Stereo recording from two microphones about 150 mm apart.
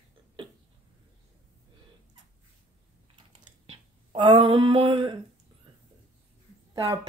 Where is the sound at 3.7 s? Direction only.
35° right (ahead or behind).